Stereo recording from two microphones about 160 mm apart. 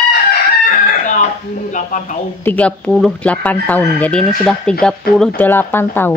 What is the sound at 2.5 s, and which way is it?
Speech, 10° left (ahead or behind).